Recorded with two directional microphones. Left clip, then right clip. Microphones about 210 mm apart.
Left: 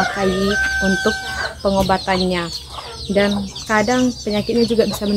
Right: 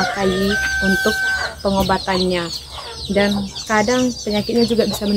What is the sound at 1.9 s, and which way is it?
Speech, 10° left (ahead or behind).